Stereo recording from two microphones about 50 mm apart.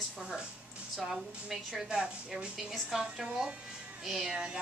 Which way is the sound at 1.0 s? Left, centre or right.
Centre.